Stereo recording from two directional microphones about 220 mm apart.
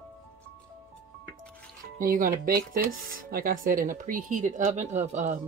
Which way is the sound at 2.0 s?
40° right (ahead or behind).